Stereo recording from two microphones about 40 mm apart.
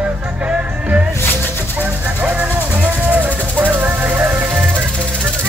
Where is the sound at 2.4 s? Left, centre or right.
Right.